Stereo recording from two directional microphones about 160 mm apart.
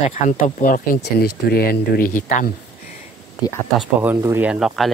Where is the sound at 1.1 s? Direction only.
75° left (ahead or behind).